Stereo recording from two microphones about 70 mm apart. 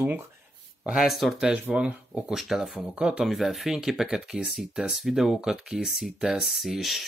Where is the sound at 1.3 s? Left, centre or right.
Centre.